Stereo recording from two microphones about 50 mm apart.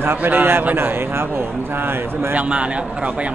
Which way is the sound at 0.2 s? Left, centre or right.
Right.